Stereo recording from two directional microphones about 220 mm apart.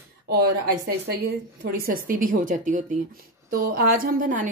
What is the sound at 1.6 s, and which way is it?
A woman's voice, 40° right (ahead or behind).